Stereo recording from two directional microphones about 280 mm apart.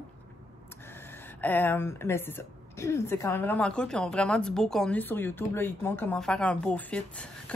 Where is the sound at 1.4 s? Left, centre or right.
Centre.